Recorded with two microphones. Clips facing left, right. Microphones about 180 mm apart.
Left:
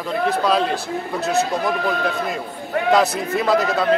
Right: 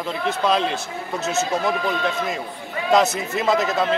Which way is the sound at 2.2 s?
60° left (ahead or behind).